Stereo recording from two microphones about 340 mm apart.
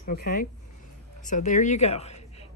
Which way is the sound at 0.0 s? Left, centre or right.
Left.